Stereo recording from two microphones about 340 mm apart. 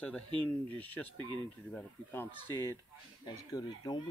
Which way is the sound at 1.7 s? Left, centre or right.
Centre.